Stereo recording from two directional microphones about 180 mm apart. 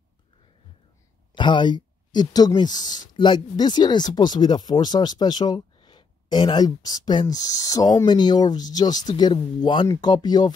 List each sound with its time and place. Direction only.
1.3 s speech: 25° left (ahead or behind)